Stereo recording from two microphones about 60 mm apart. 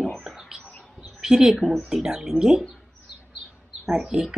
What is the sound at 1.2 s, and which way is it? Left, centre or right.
Speech, centre.